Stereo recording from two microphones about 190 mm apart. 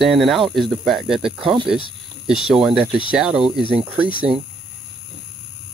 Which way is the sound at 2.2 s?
5° right (ahead or behind).